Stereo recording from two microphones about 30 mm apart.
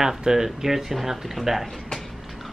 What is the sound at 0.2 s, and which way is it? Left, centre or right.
A man's voice, centre.